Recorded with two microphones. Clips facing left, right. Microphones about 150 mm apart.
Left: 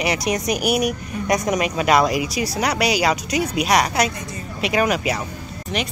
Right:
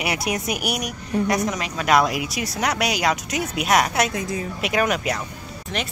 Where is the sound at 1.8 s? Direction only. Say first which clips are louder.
Even; centre (ahead or behind).